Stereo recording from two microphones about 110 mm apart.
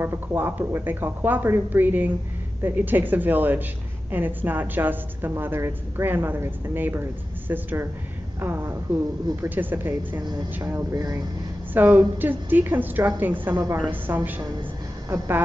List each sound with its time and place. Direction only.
0.0 s a woman's voice: 20° right (ahead or behind)
11.7 s a woman's voice: 15° right (ahead or behind)